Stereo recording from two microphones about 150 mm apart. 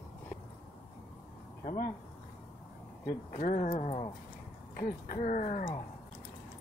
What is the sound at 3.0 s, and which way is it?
Speech, 65° left (ahead or behind).